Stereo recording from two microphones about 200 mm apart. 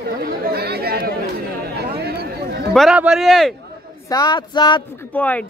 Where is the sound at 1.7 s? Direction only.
50° right (ahead or behind).